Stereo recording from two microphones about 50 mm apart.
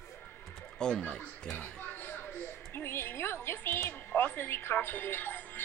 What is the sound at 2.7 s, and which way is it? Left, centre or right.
Speech, left.